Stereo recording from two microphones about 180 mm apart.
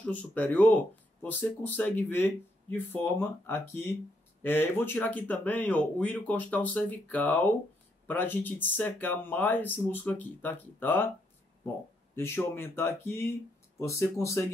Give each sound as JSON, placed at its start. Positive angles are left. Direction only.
{"t": 0.0, "sound": "speech", "side_deg": 10}
{"t": 12.2, "sound": "speech", "side_deg": 15}